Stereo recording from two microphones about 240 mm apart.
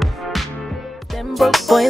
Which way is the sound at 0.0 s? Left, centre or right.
Centre.